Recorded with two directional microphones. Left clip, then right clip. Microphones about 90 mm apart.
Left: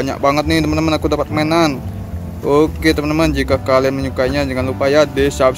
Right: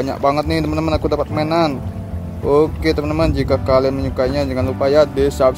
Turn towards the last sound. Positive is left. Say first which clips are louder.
# left 1 dB
turn(degrees=0)  # may be behind; listen again after turning